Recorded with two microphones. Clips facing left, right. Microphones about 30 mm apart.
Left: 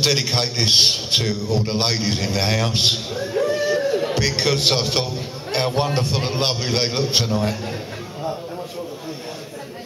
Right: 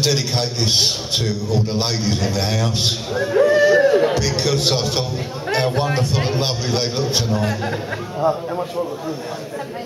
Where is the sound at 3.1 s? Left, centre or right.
Right.